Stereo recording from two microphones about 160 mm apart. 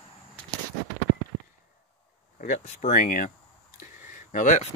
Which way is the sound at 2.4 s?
50° left (ahead or behind).